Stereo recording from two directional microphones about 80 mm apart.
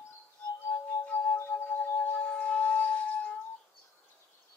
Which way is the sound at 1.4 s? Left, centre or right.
Centre.